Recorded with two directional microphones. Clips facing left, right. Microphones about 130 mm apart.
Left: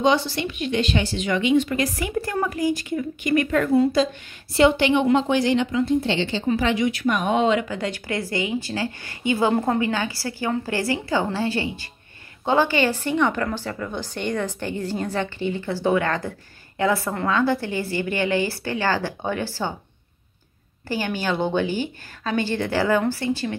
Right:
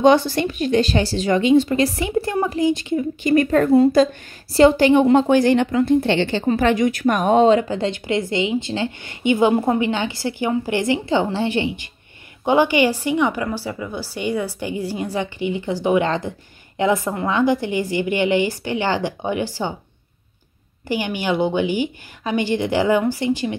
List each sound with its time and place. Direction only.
0.0 s a woman's voice: 50° right (ahead or behind); by 19.7 s 15° right (ahead or behind)
20.9 s a woman's voice: 15° right (ahead or behind)